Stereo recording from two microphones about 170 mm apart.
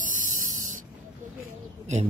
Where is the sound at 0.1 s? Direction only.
50° right (ahead or behind).